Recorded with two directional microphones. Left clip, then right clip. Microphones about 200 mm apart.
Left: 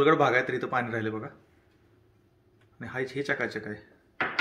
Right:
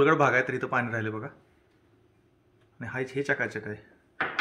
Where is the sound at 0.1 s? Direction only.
40° right (ahead or behind).